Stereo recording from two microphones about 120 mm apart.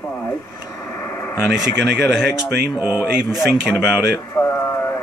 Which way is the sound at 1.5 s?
5° right (ahead or behind).